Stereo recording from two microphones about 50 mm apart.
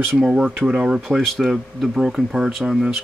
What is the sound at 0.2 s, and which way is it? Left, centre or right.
Speech, centre.